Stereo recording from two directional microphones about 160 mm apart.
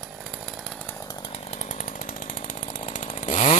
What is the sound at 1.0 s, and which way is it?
Chainsaw, 30° left (ahead or behind).